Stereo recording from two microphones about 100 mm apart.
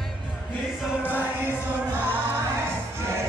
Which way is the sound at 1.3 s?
20° right (ahead or behind).